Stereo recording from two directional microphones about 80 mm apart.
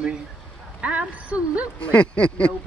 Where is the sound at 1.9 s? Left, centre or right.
Centre.